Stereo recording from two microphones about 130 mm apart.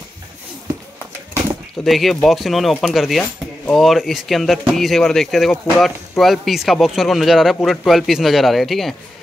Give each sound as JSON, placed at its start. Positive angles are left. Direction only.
{"t": 1.9, "sound": "speech", "side_deg": 0}